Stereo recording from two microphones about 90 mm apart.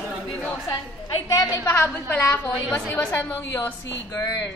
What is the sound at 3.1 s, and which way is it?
A woman's voice, 30° left (ahead or behind).